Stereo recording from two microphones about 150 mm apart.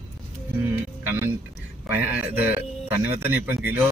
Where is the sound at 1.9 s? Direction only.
10° right (ahead or behind).